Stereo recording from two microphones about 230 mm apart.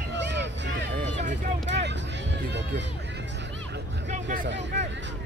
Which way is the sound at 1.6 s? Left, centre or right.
Right.